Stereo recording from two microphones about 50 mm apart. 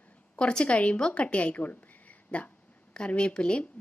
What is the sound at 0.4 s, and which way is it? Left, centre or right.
A woman's voice, left.